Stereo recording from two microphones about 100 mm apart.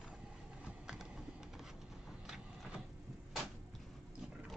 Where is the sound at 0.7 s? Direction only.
5° right (ahead or behind).